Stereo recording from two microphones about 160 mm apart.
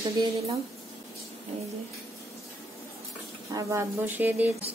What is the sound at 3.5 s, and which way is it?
A woman's voice, 15° right (ahead or behind).